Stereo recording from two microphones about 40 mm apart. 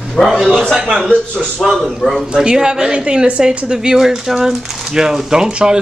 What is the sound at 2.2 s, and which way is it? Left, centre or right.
Speech, centre.